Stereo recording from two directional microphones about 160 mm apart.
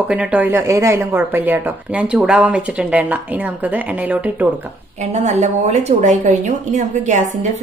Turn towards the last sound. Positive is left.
turn(degrees=-50)  # may be behind; listen again after turning